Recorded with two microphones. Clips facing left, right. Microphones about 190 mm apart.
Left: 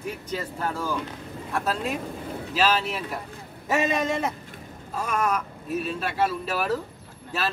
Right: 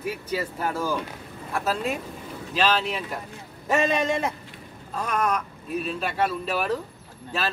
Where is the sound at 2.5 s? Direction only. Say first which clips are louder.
Even; 5° left (ahead or behind).